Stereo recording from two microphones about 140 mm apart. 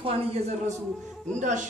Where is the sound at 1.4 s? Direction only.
65° right (ahead or behind).